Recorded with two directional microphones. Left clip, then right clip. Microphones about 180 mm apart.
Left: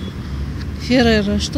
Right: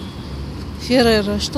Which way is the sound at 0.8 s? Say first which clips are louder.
Even; 5° right (ahead or behind).